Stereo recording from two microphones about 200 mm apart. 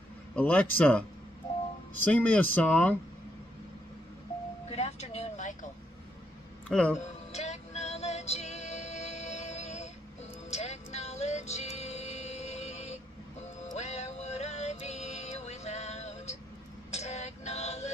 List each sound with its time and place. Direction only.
0.4 s speech: 10° left (ahead or behind)
2.0 s speech: 10° left (ahead or behind)
4.6 s vehicle: 30° left (ahead or behind)
6.7 s speech: 5° left (ahead or behind)
7.0 s music: 35° left (ahead or behind)